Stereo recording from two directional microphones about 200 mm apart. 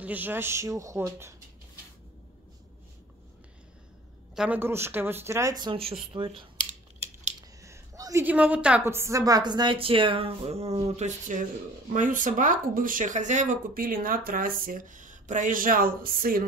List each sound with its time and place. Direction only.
0.0 s speech: 10° right (ahead or behind)
4.4 s a woman's voice: 10° right (ahead or behind); by 6.4 s 25° right (ahead or behind)
7.6 s a woman's voice: 15° right (ahead or behind); by 16.4 s 45° right (ahead or behind)